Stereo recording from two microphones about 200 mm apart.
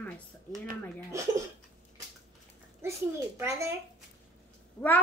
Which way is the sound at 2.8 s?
15° right (ahead or behind).